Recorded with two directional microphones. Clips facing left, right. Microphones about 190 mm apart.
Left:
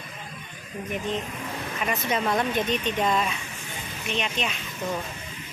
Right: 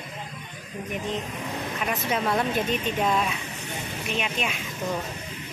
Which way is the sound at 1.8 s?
Centre (ahead or behind).